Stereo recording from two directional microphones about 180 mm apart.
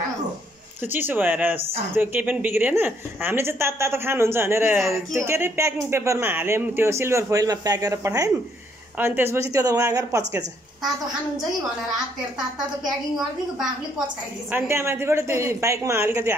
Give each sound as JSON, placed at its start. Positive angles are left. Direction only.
{"t": 0.8, "sound": "a woman's voice", "side_deg": -10}
{"t": 14.5, "sound": "a woman's voice", "side_deg": -15}